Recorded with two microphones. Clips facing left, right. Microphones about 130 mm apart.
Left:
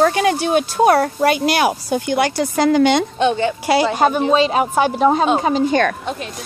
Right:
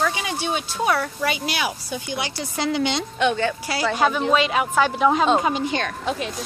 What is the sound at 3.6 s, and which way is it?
Speech, 70° left (ahead or behind).